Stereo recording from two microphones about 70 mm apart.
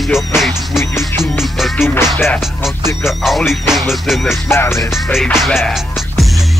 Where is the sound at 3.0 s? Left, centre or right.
Centre.